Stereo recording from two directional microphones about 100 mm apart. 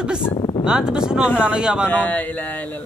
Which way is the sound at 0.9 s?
5° right (ahead or behind).